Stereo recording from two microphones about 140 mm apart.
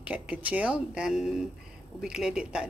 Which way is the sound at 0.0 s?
10° right (ahead or behind).